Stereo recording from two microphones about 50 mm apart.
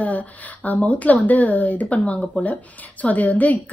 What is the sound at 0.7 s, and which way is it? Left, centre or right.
A woman's voice, left.